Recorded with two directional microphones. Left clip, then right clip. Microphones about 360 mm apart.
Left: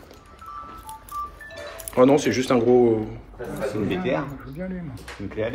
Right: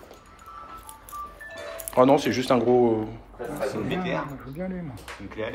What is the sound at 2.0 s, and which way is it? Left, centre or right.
Speech, centre.